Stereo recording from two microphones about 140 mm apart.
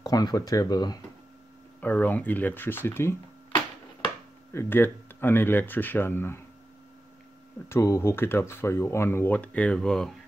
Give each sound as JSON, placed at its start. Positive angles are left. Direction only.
{"t": 0.0, "sound": "speech", "side_deg": 25}
{"t": 1.8, "sound": "speech", "side_deg": 10}
{"t": 4.5, "sound": "speech", "side_deg": 15}
{"t": 7.6, "sound": "speech", "side_deg": 20}